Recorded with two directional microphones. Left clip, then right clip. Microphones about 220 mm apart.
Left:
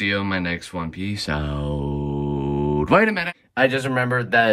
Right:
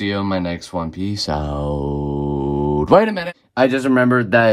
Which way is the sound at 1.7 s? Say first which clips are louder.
Right 5 dB; 15° left (ahead or behind).